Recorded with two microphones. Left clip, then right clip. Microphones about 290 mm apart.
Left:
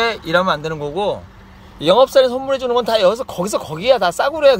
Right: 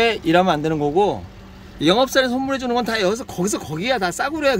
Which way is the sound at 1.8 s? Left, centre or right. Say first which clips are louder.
Left 5 dB; left.